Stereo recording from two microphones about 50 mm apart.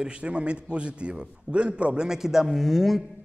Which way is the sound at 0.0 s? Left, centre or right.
Right.